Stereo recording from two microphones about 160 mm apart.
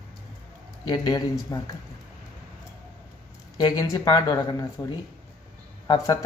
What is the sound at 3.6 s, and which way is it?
Speech, 25° left (ahead or behind).